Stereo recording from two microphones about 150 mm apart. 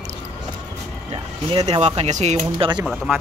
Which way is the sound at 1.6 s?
45° right (ahead or behind).